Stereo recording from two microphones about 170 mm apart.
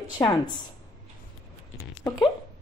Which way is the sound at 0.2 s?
15° left (ahead or behind).